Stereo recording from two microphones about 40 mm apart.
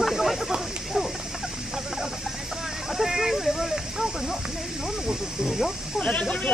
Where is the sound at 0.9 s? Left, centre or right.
Centre.